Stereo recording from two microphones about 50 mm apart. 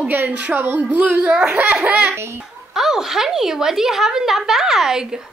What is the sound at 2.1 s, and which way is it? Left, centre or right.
Speech, right.